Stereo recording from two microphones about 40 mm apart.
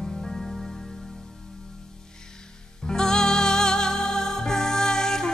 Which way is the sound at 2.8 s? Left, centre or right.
Centre.